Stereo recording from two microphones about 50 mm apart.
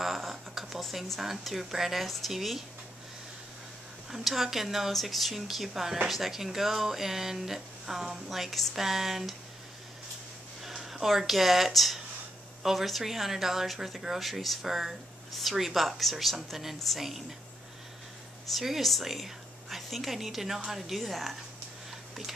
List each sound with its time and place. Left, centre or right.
0.0 s a sound: centre
1.2 s speech: centre
4.1 s speech: centre
10.6 s speech: centre
18.5 s speech: centre